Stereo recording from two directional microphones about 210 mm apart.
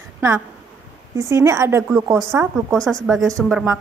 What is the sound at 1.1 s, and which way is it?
Speech, 15° right (ahead or behind).